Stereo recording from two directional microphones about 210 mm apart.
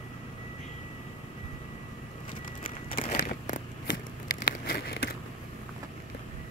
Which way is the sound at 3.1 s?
45° left (ahead or behind).